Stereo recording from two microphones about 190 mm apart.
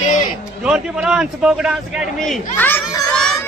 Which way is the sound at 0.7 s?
5° right (ahead or behind).